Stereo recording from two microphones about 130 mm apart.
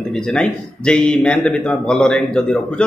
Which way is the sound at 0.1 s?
5° left (ahead or behind).